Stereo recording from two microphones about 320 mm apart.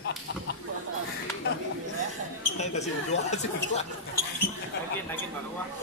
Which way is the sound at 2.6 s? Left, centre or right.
Left.